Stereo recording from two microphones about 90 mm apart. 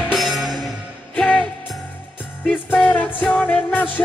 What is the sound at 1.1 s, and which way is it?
Music, 15° left (ahead or behind).